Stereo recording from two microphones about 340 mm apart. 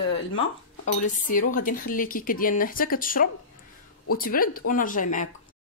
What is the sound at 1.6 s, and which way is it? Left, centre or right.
Speech, left.